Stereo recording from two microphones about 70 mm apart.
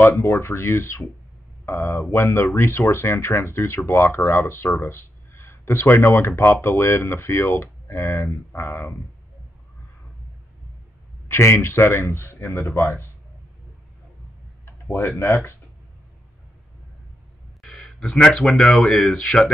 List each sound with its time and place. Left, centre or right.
0.2 s speech: left
11.2 s speech: left
14.9 s speech: left
17.6 s speech: centre